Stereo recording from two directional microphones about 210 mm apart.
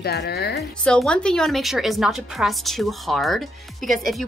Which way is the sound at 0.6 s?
5° left (ahead or behind).